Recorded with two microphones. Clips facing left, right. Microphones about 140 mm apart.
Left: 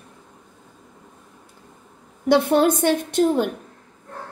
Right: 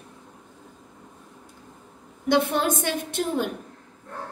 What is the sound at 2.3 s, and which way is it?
A woman's voice, 55° left (ahead or behind).